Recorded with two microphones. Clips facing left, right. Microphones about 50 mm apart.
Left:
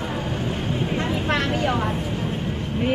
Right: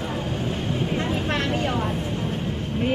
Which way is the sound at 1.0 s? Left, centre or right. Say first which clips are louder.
Left 2 dB; centre.